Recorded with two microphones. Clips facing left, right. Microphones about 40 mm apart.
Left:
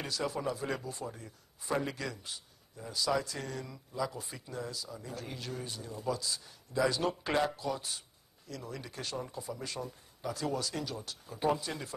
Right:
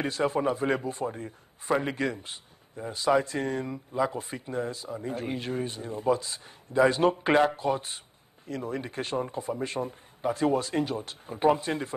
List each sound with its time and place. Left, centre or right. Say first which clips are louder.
0.0 s a man's voice: right 8 dB; right